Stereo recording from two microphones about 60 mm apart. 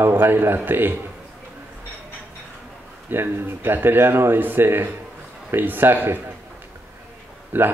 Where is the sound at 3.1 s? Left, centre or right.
Right.